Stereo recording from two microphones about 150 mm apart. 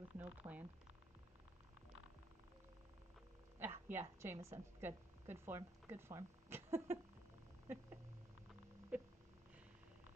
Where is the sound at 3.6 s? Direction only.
15° right (ahead or behind).